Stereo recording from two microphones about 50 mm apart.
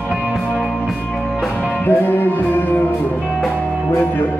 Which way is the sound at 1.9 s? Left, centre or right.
Left.